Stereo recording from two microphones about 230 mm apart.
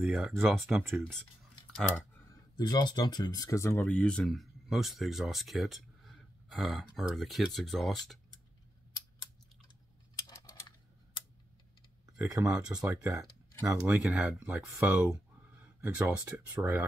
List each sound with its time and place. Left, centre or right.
0.0 s speech: centre
2.5 s speech: centre
8.9 s a sound: centre
12.2 s speech: centre